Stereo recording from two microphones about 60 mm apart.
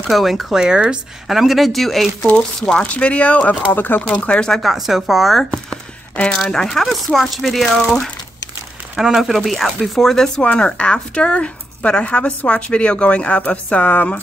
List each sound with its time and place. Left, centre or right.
0.1 s speech: centre
2.3 s a woman's voice: centre
3.7 s speech: left
4.0 s speech: left
4.6 s speech: centre
8.9 s speech: centre
10.4 s a woman's voice: centre